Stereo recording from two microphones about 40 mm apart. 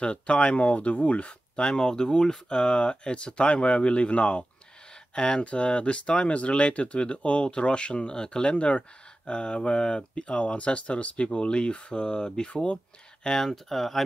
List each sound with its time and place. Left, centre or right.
0.0 s speech: left
1.6 s speech: centre
12.4 s speech: left
13.2 s speech: centre